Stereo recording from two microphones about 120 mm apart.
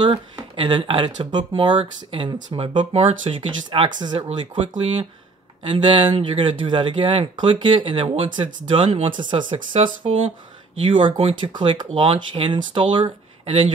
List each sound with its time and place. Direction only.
0.6 s speech: 40° right (ahead or behind)
2.8 s speech: 60° right (ahead or behind)
9.3 s speech: 40° right (ahead or behind)
10.0 s speech: 55° right (ahead or behind)
10.8 s speech: 45° right (ahead or behind)
11.5 s speech: 40° right (ahead or behind)
11.9 s speech: 50° right (ahead or behind)